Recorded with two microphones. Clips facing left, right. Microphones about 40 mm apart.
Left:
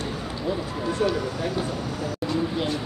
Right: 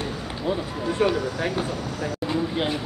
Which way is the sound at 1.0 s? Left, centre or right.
Right.